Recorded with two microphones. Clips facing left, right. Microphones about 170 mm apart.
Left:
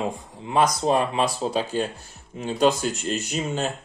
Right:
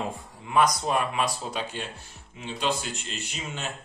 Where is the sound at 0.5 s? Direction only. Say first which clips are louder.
Left 3 dB; 30° left (ahead or behind).